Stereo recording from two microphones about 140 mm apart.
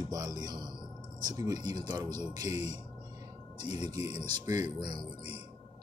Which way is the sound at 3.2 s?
30° right (ahead or behind).